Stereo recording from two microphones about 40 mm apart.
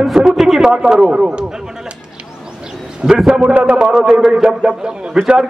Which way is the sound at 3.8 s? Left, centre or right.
Centre.